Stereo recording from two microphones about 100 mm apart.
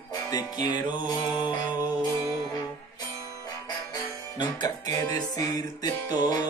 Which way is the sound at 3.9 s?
40° left (ahead or behind).